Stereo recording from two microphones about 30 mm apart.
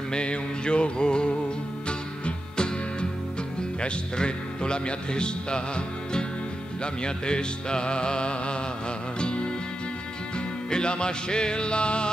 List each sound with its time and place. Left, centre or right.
0.1 s music: left
3.8 s a man's voice: left
9.2 s music: left
10.7 s a man's voice: left